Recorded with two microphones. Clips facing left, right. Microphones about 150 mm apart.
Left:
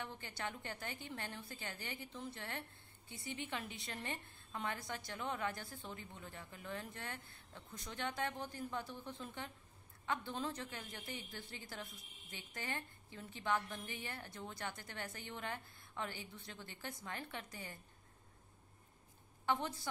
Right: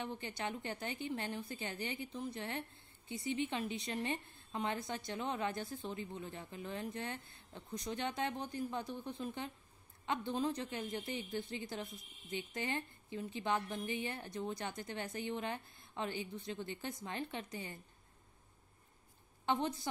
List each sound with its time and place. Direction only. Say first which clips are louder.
0.0 s a woman's voice: right 4 dB; 20° right (ahead or behind)
19.4 s a woman's voice: right 3 dB; 20° right (ahead or behind)